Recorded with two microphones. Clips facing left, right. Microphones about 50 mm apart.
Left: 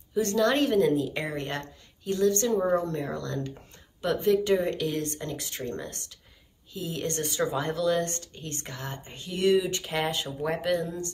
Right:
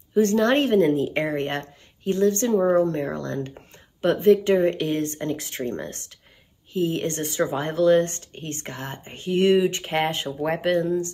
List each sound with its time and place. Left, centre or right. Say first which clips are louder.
0.1 s a woman's voice: right 5 dB; right